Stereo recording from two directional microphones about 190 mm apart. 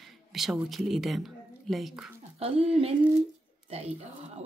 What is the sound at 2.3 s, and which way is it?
Speech, 30° right (ahead or behind).